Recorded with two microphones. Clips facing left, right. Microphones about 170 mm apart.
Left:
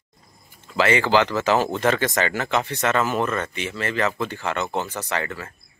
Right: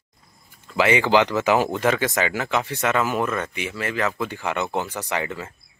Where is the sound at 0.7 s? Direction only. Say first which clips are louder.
Right 1 dB; 15° right (ahead or behind).